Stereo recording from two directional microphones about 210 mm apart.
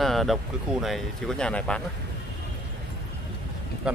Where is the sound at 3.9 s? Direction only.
5° right (ahead or behind).